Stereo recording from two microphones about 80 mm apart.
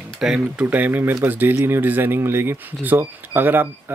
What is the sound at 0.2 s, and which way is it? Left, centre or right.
Speech, centre.